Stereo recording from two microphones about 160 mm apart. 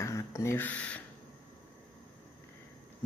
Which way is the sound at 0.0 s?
20° left (ahead or behind).